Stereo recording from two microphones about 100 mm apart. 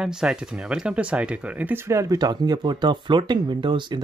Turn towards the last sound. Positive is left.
turn(degrees=-50)  # may be behind; listen again after turning